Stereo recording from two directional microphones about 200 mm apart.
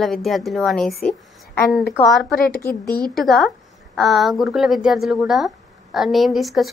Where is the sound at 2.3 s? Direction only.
50° left (ahead or behind).